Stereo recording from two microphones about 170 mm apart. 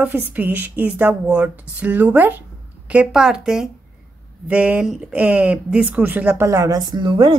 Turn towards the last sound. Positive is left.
turn(degrees=-25)  # may be behind; listen again after turning